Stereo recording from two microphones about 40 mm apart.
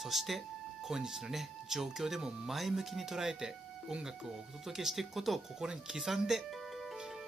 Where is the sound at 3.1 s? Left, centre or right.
Centre.